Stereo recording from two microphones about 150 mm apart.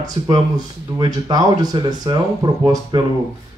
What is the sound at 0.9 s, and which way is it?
Speech, 25° right (ahead or behind).